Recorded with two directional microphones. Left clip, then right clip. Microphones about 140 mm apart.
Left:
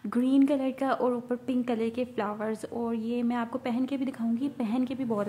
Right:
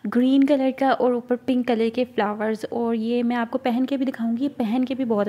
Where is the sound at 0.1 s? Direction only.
30° right (ahead or behind).